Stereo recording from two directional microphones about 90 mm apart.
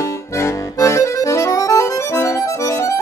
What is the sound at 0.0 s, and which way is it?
Accordion, 30° left (ahead or behind).